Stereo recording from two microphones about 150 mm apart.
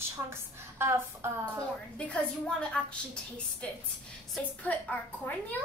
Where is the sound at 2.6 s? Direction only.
5° left (ahead or behind).